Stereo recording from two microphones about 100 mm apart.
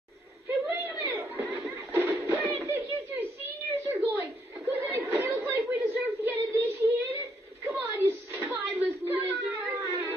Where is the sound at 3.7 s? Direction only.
30° right (ahead or behind).